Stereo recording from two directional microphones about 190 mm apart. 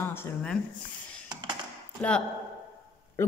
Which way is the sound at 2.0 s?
10° left (ahead or behind).